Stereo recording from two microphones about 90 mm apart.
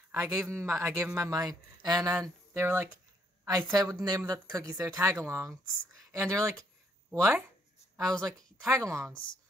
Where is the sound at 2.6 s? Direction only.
25° right (ahead or behind).